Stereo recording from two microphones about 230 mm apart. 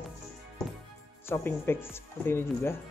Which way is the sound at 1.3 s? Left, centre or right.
Centre.